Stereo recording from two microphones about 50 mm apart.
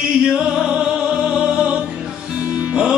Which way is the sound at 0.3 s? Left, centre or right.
Centre.